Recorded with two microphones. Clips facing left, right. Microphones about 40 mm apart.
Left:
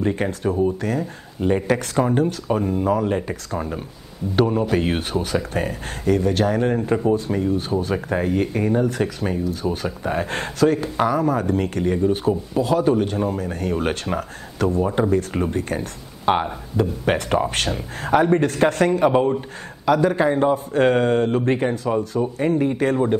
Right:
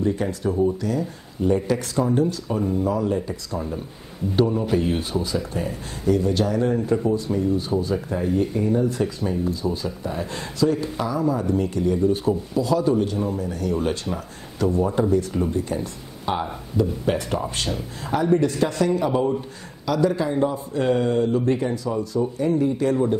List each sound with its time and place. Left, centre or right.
0.0 s speech: left